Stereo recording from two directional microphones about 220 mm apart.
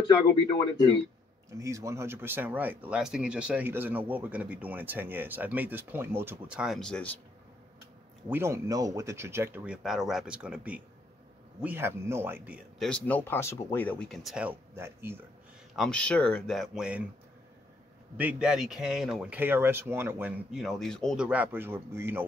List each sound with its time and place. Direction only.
0.0 s speech: 20° left (ahead or behind)
1.5 s speech: 15° right (ahead or behind); by 7.1 s 5° left (ahead or behind)
8.3 s speech: 10° right (ahead or behind)
15.7 s speech: centre (ahead or behind)
18.1 s speech: 5° right (ahead or behind)